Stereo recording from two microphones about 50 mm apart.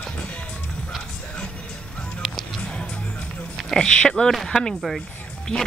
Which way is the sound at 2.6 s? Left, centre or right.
Left.